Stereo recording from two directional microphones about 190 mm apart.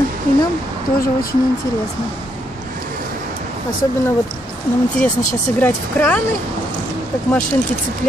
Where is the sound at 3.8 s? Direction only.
15° left (ahead or behind).